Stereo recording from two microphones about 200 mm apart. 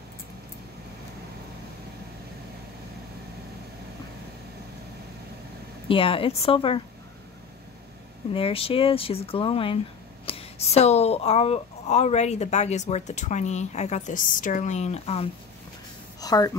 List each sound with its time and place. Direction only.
5.9 s speech: 25° left (ahead or behind)
8.3 s speech: 25° left (ahead or behind)
16.2 s speech: 15° left (ahead or behind)